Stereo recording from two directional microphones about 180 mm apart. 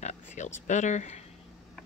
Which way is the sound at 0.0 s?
40° left (ahead or behind).